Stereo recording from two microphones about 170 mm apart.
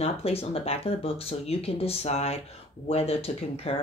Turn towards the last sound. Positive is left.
turn(degrees=35)  # may be behind; listen again after turning